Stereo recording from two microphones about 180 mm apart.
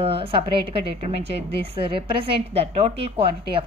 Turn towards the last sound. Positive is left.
turn(degrees=-35)  # may be behind; listen again after turning